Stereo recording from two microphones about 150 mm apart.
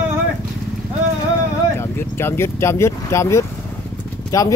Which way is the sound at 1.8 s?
15° left (ahead or behind).